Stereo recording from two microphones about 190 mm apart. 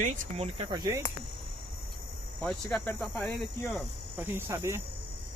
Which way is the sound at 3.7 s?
5° right (ahead or behind).